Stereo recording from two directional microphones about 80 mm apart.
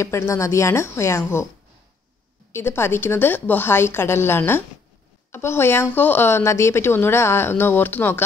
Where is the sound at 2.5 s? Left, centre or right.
Left.